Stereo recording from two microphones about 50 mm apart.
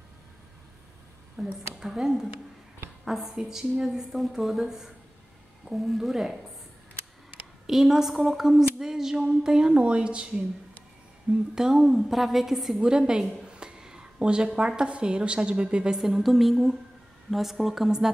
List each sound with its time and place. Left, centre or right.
1.3 s a woman's voice: centre
7.6 s a woman's voice: centre
11.5 s a woman's voice: centre
12.7 s a woman's voice: centre
16.0 s a woman's voice: centre